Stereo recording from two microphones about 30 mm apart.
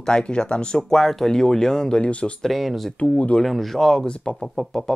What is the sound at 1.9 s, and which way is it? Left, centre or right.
Speech, left.